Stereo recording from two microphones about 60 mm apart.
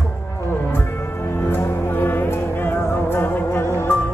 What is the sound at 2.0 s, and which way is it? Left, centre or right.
Music, left.